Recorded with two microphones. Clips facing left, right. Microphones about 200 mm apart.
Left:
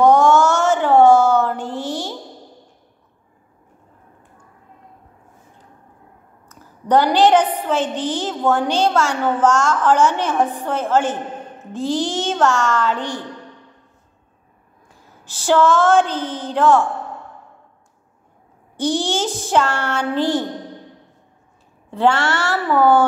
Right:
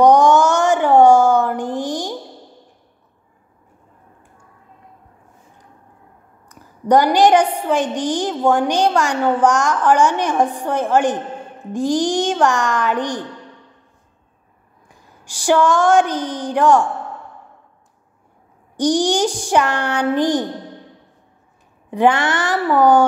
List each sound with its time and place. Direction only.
0.0 s a sound: 15° right (ahead or behind)
6.5 s a woman's voice: 15° right (ahead or behind)
15.0 s a woman's voice: 15° right (ahead or behind)
18.8 s a woman's voice: 15° right (ahead or behind)
21.9 s a woman's voice: 15° right (ahead or behind)